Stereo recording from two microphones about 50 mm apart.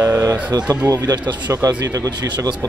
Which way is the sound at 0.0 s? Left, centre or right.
Right.